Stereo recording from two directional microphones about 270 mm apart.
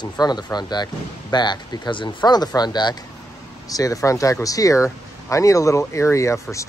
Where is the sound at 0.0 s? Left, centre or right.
Centre.